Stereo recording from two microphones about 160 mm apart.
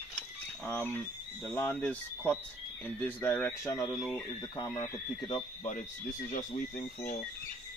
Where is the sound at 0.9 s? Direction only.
10° left (ahead or behind).